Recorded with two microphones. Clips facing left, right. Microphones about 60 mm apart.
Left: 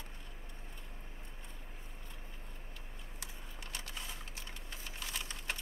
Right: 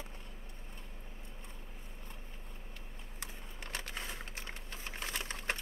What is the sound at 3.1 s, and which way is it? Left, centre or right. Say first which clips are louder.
Typing: right 3 dB; right.